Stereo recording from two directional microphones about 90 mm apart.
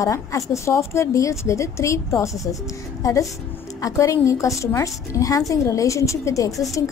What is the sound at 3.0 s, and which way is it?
A woman's voice, 40° left (ahead or behind).